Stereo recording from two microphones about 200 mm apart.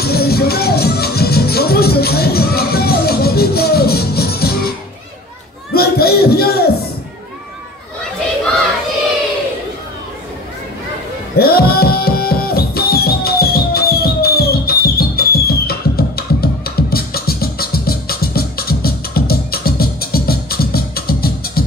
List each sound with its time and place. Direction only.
0.0 s music: 50° left (ahead or behind)
5.7 s a sound: 50° left (ahead or behind)
11.3 s music: 50° left (ahead or behind)